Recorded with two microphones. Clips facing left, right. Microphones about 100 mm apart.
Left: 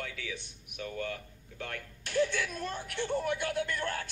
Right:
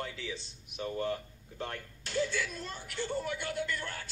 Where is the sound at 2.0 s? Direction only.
55° left (ahead or behind).